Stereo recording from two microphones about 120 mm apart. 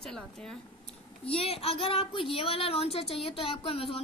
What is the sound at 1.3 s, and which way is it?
Speech, 55° left (ahead or behind).